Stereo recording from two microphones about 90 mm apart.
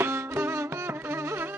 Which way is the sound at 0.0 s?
25° right (ahead or behind).